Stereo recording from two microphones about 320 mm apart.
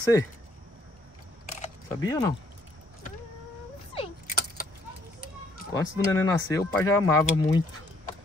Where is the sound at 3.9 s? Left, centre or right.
Left.